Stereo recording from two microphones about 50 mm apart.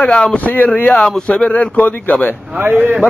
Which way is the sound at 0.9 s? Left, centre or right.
Centre.